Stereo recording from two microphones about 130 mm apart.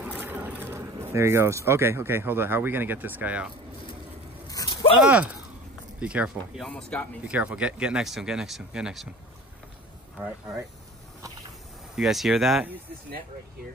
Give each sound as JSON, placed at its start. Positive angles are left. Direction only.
{"t": 0.2, "sound": "speech", "side_deg": -15}
{"t": 4.5, "sound": "a sound", "side_deg": 30}
{"t": 5.0, "sound": "speech", "side_deg": -10}
{"t": 6.6, "sound": "speech", "side_deg": 10}
{"t": 7.2, "sound": "speech", "side_deg": -10}
{"t": 11.9, "sound": "speech", "side_deg": -5}